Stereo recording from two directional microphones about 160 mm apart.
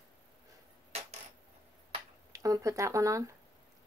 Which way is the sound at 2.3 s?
20° right (ahead or behind).